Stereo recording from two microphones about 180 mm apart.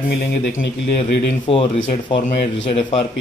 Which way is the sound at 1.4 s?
30° left (ahead or behind).